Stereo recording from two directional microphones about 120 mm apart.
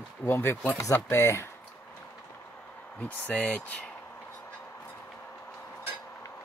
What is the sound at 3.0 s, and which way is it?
Speech, 10° left (ahead or behind).